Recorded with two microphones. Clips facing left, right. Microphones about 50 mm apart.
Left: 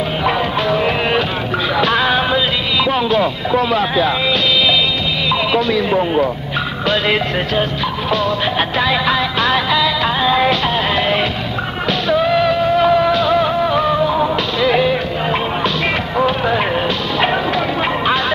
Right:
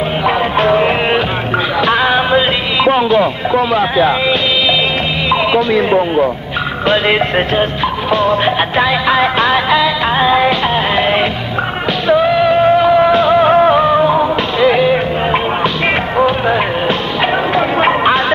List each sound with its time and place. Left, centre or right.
0.6 s music: right
2.3 s speech: right
5.3 s music: right
6.9 s music: right
8.5 s music: centre; by 13.7 s right
13.7 s music: right
17.6 s a sound: right